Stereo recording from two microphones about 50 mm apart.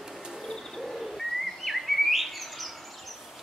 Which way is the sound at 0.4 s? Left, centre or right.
Centre.